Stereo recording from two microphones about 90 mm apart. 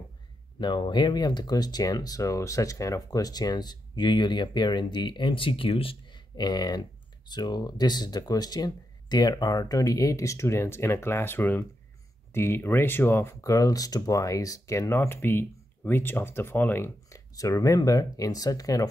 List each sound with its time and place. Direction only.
0.6 s speech: 60° left (ahead or behind); by 17.2 s 25° left (ahead or behind)
17.3 s speech: 40° left (ahead or behind)